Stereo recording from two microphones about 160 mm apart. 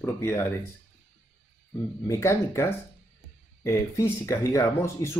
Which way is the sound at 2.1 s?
15° left (ahead or behind).